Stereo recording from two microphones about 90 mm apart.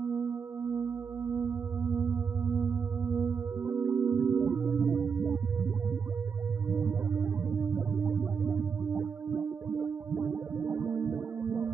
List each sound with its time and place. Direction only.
0.0 s singing bowl: 20° right (ahead or behind)
6.7 s music: 25° right (ahead or behind)